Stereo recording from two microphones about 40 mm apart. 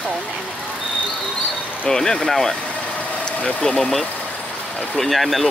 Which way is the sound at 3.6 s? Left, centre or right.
Centre.